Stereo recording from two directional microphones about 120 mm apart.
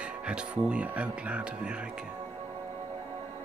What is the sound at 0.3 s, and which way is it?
Speech, 10° right (ahead or behind).